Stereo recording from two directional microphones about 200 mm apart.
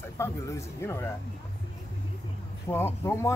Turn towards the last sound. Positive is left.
turn(degrees=10)  # may be behind; listen again after turning